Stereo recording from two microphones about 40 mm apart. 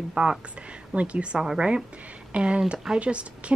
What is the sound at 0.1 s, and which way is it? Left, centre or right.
Speech, centre.